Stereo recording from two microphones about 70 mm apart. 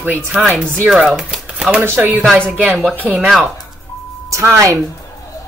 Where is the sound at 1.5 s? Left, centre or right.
Centre.